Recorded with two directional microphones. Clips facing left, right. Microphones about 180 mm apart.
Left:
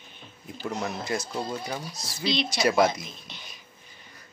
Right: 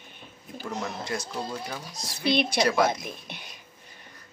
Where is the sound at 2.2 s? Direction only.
55° right (ahead or behind).